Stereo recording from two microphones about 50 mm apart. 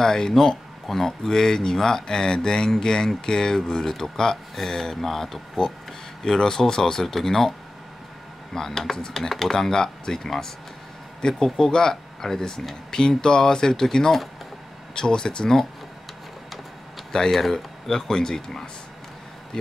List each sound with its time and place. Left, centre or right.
0.0 s speech: centre
8.5 s speech: centre
17.1 s speech: centre